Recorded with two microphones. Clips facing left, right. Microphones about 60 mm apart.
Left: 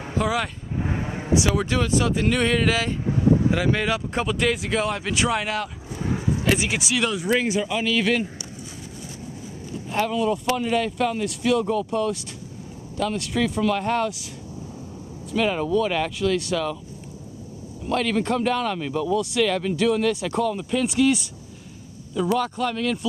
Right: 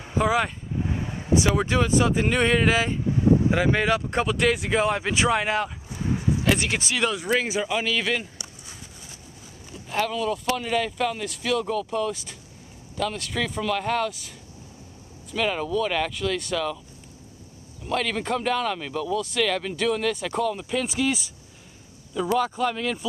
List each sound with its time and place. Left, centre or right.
0.2 s speech: centre
0.7 s a sound: left
1.6 s speech: centre
6.0 s speech: centre
7.9 s speech: centre
9.8 s speech: centre
15.3 s speech: centre
17.8 s speech: centre